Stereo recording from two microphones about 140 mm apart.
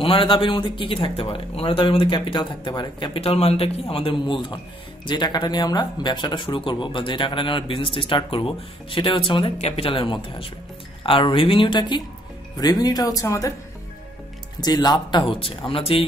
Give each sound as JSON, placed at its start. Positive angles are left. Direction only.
{"t": 0.0, "sound": "speech", "side_deg": 40}
{"t": 14.6, "sound": "speech", "side_deg": 30}